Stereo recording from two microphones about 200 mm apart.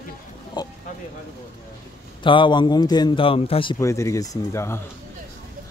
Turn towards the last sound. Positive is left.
turn(degrees=15)  # may be behind; listen again after turning